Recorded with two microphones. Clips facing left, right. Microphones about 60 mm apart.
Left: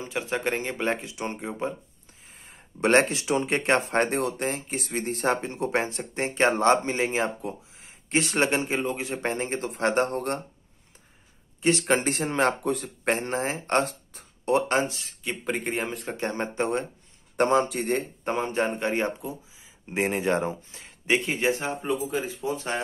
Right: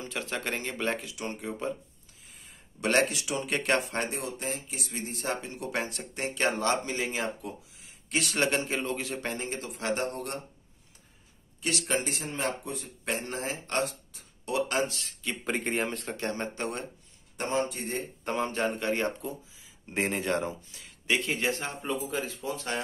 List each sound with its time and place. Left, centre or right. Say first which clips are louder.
0.0 s speech: left 6 dB; left
2.3 s speech: left 6 dB; left
11.8 s a man's voice: left 7 dB; left
12.3 s speech: left 9 dB; left
13.0 s speech: left 6 dB; left
15.4 s speech: left 1 dB; centre
16.2 s speech: left 6 dB; left
17.5 s speech: left 4 dB; left
18.2 s speech: right 1 dB; left